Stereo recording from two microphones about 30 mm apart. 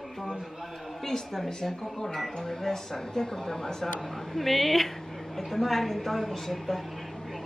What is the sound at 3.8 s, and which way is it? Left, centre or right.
Speech, centre.